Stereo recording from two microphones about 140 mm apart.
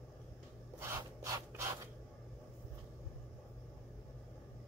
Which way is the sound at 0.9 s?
20° right (ahead or behind).